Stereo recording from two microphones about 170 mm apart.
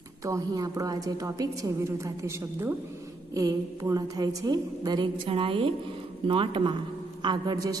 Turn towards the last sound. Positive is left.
turn(degrees=-25)  # may be behind; listen again after turning